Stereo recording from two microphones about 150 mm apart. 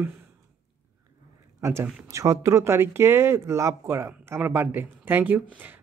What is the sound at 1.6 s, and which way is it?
A man's voice, 20° right (ahead or behind).